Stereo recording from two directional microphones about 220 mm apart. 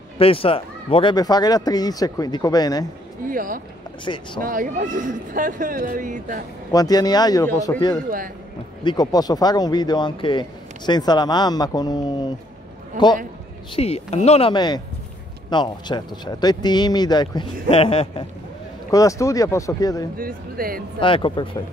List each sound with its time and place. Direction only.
0.2 s speech: 25° left (ahead or behind)
3.3 s speech: 40° right (ahead or behind)
4.0 s speech: 20° left (ahead or behind)
4.4 s speech: 40° right (ahead or behind)
6.7 s speech: 15° left (ahead or behind)
13.7 s speech: 25° left (ahead or behind)
18.9 s speech: 15° left (ahead or behind)
20.2 s speech: 40° right (ahead or behind)
21.0 s speech: 20° left (ahead or behind)